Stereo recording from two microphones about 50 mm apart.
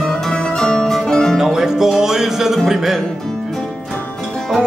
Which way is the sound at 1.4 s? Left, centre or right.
Centre.